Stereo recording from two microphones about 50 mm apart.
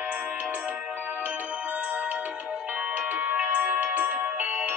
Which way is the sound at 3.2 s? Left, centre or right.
Right.